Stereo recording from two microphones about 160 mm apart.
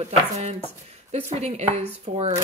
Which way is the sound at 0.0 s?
40° right (ahead or behind).